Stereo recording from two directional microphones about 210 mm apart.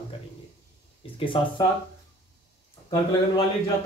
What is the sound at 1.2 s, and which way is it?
Speech, 25° left (ahead or behind).